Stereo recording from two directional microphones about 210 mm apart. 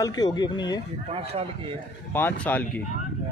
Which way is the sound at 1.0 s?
25° right (ahead or behind).